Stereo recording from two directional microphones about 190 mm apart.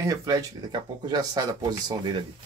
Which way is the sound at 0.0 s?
15° right (ahead or behind).